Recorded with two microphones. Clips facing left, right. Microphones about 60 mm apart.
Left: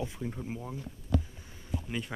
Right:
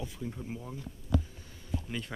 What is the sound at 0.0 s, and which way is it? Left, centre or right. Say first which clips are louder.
Speech: left 3 dB; left.